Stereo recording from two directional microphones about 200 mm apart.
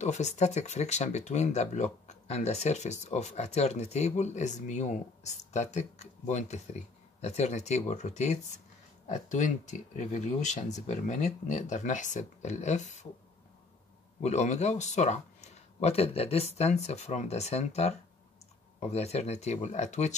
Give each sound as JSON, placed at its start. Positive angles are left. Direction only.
{"t": 0.0, "sound": "speech", "side_deg": 35}
{"t": 14.2, "sound": "speech", "side_deg": 35}